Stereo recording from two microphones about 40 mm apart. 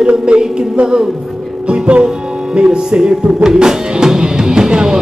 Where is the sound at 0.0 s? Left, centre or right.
Right.